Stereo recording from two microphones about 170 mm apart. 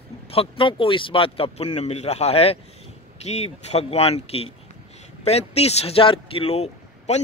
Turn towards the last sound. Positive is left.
turn(degrees=40)  # may be behind; listen again after turning